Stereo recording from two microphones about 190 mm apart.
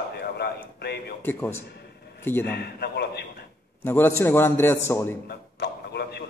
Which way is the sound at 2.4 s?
60° left (ahead or behind).